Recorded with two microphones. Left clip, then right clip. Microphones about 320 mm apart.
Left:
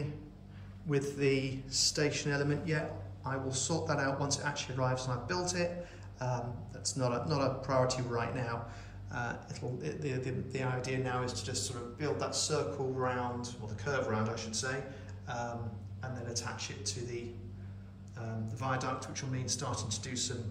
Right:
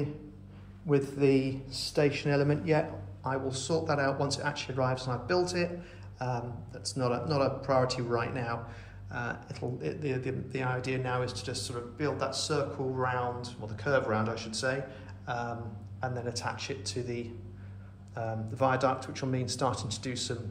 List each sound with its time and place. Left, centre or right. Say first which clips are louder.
1.1 s speech: right 5 dB; centre
3.3 s a man's voice: right 4 dB; centre
18.5 s speech: right 8 dB; centre